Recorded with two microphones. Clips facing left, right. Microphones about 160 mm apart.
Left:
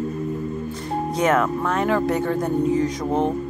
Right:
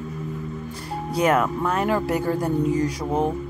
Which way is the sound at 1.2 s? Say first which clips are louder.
Even; 10° right (ahead or behind).